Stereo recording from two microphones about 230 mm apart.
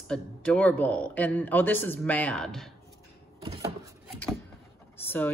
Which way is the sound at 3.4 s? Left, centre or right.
Centre.